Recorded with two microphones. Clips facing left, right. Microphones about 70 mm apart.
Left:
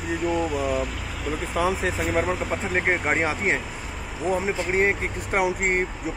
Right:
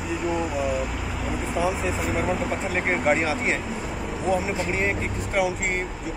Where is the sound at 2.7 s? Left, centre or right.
Left.